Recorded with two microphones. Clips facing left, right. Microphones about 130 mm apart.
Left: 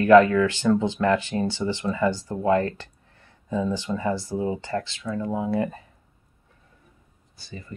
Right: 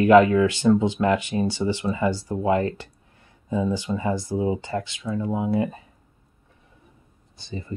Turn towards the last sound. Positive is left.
turn(degrees=-25)  # may be behind; listen again after turning